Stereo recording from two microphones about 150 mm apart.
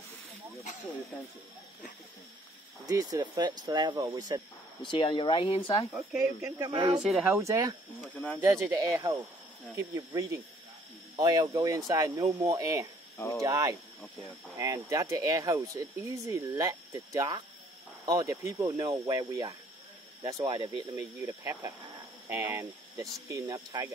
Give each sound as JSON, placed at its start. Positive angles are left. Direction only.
{"t": 2.9, "sound": "speech", "side_deg": -25}
{"t": 4.8, "sound": "speech", "side_deg": 35}
{"t": 6.4, "sound": "speech", "side_deg": -25}
{"t": 7.0, "sound": "speech", "side_deg": -5}
{"t": 7.3, "sound": "speech", "side_deg": -20}
{"t": 21.0, "sound": "speech", "side_deg": -15}